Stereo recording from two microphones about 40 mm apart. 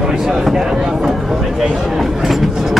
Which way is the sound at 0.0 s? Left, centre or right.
Centre.